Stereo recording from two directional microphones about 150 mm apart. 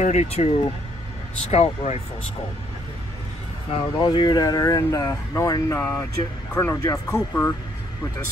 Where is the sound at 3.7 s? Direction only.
30° left (ahead or behind).